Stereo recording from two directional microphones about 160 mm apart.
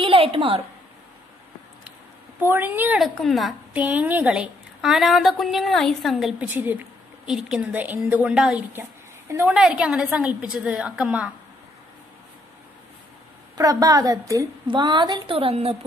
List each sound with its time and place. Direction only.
0.0 s a woman's voice: 35° right (ahead or behind)
2.4 s a woman's voice: 15° right (ahead or behind)
3.0 s a woman's voice: centre (ahead or behind); by 9.6 s 15° right (ahead or behind)
9.6 s a woman's voice: 5° right (ahead or behind)
13.6 s a woman's voice: 25° right (ahead or behind)